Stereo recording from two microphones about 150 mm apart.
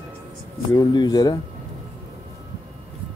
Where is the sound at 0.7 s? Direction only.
25° left (ahead or behind).